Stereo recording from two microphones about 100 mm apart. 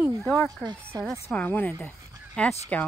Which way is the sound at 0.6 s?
15° left (ahead or behind).